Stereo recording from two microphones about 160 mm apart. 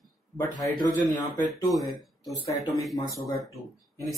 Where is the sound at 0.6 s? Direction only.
25° left (ahead or behind).